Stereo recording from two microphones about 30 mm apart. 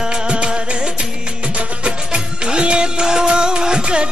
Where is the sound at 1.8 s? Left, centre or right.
Right.